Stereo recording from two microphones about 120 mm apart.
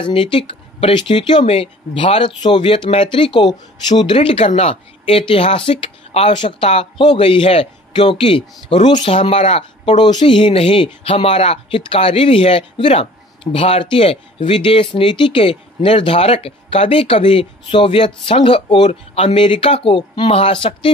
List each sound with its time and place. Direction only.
0.0 s speech: 45° left (ahead or behind)